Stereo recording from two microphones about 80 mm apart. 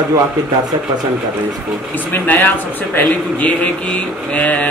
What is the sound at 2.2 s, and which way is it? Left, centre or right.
Speech, left.